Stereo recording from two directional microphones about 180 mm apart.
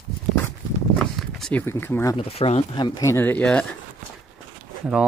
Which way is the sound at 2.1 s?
35° left (ahead or behind).